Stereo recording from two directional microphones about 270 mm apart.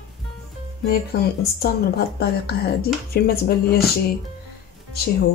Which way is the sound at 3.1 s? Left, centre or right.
Left.